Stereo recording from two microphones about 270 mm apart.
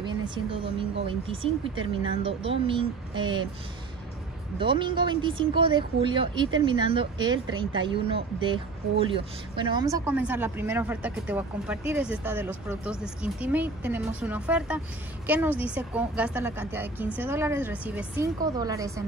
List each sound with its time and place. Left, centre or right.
0.0 s speech: centre
4.6 s speech: centre